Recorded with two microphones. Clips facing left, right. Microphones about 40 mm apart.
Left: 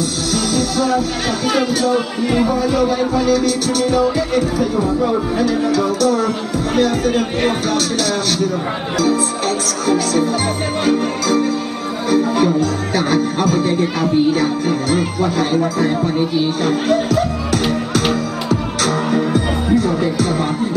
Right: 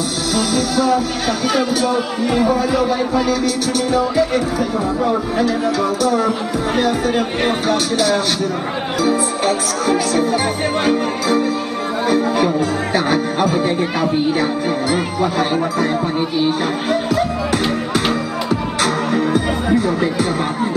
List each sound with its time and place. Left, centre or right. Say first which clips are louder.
0.3 s music: right 1 dB; centre
1.5 s speech: left 2 dB; centre